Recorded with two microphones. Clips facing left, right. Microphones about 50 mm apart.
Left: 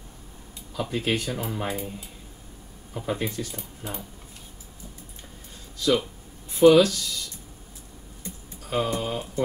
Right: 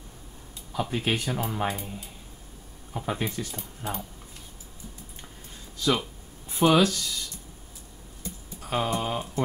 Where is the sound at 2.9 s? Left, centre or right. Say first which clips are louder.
Left 1 dB; centre.